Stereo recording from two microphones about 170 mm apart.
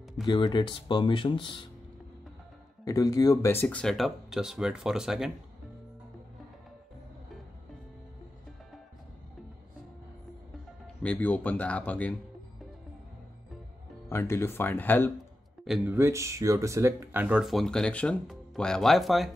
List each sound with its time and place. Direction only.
0.3 s speech: 25° left (ahead or behind)
2.8 s speech: 20° left (ahead or behind); by 5.3 s 5° right (ahead or behind)
11.0 s speech: 10° left (ahead or behind)
14.0 s speech: 15° left (ahead or behind)
15.6 s speech: centre (ahead or behind)
15.9 s speech: 15° right (ahead or behind); by 19.3 s centre (ahead or behind)